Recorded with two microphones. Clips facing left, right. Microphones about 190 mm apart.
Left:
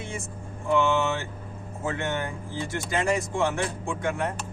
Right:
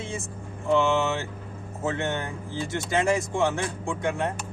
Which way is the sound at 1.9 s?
20° right (ahead or behind).